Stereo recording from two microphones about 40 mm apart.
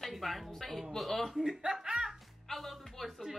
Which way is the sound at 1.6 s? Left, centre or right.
Centre.